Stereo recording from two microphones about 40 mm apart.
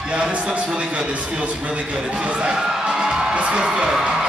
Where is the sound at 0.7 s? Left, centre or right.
Right.